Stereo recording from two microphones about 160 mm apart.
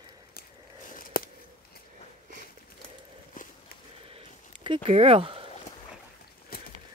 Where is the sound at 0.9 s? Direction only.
60° left (ahead or behind).